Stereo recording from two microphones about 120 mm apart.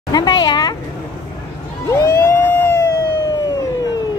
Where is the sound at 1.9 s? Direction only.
20° left (ahead or behind).